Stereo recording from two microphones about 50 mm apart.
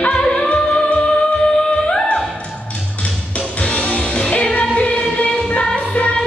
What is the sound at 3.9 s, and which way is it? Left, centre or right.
Music, left.